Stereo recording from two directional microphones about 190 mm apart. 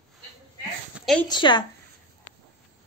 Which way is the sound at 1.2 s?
25° left (ahead or behind).